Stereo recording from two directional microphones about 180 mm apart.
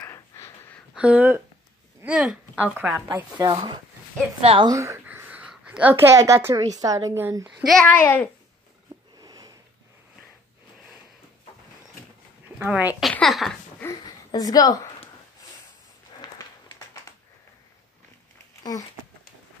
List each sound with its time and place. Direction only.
0.0 s a sound: 15° left (ahead or behind)
0.9 s speech: 5° right (ahead or behind)
3.3 s a woman's voice: 25° right (ahead or behind)
4.7 s speech: 15° right (ahead or behind)
7.6 s a child's voice: 5° left (ahead or behind)
9.2 s sniff: 20° right (ahead or behind)
12.5 s speech: 10° right (ahead or behind)
13.1 s a sound: centre (ahead or behind)
13.8 s speech: 20° left (ahead or behind)
16.2 s a sound: 20° left (ahead or behind)
18.6 s speech: 20° left (ahead or behind)